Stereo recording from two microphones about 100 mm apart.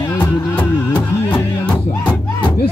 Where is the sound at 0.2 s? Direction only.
15° left (ahead or behind).